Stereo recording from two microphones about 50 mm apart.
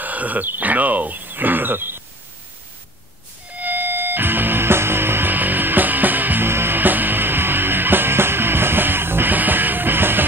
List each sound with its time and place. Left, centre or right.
0.0 s speech: right
3.5 s music: right
6.4 s music: right